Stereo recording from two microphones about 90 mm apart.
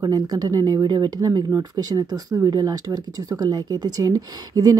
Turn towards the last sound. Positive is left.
turn(degrees=-45)  # may be behind; listen again after turning